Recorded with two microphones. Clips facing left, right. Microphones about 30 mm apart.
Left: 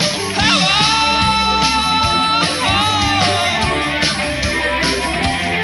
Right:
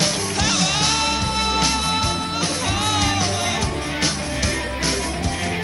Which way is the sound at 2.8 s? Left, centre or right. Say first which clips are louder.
Left 5 dB; left.